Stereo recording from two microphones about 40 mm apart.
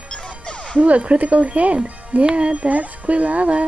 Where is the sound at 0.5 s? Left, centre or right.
Left.